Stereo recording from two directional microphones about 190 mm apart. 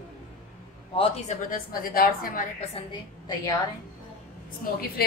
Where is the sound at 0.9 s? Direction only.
35° left (ahead or behind).